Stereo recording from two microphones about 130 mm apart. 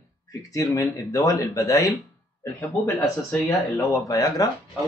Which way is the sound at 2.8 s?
15° left (ahead or behind).